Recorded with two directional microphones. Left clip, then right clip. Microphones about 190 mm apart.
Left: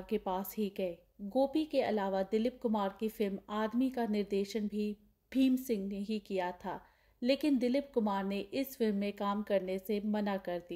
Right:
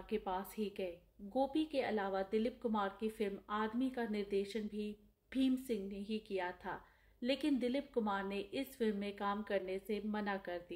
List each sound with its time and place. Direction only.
0.1 s a woman's voice: 45° left (ahead or behind)